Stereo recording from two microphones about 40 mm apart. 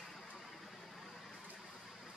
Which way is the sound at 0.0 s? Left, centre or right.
Centre.